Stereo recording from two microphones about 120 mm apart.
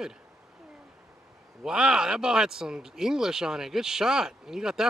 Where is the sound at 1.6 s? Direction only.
5° right (ahead or behind).